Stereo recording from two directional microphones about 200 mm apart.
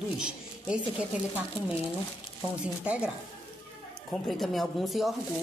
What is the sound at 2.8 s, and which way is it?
Speech, 5° right (ahead or behind).